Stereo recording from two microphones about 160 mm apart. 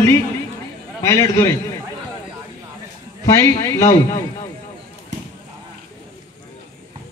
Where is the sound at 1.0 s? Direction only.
15° left (ahead or behind).